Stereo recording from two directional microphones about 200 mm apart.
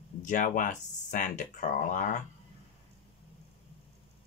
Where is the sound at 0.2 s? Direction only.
40° left (ahead or behind).